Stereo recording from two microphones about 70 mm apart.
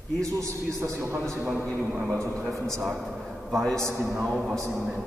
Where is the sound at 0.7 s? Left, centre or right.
Right.